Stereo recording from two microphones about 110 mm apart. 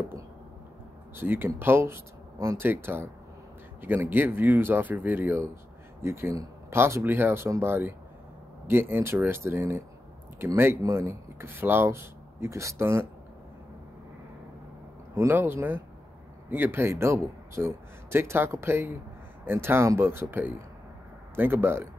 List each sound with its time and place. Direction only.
1.1 s a man's voice: 20° right (ahead or behind)
15.1 s a man's voice: 20° right (ahead or behind)